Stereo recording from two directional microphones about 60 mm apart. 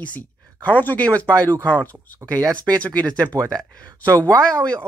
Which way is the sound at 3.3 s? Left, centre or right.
Right.